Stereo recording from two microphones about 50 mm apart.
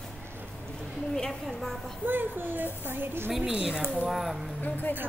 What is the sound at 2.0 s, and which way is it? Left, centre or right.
Speech, right.